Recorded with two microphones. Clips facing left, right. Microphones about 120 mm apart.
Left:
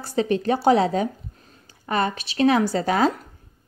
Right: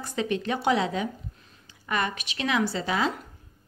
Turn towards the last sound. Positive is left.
turn(degrees=45)  # may be behind; listen again after turning